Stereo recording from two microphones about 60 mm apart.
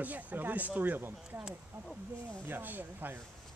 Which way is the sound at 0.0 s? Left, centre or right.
Right.